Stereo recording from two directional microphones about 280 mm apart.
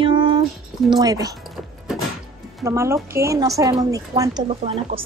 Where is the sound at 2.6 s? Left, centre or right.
Centre.